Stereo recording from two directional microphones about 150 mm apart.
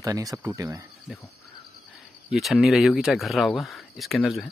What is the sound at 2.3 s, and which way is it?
Speech, centre (ahead or behind).